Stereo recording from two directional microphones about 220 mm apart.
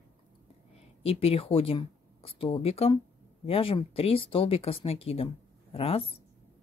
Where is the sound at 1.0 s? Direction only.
25° left (ahead or behind).